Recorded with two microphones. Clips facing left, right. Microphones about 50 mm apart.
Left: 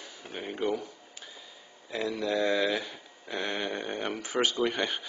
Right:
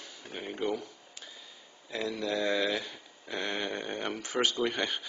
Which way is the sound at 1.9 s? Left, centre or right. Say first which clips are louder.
Left 2 dB; centre.